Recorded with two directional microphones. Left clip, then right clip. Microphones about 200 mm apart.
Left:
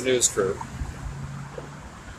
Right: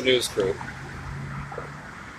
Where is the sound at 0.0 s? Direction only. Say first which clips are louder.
Right 1 dB; 10° left (ahead or behind).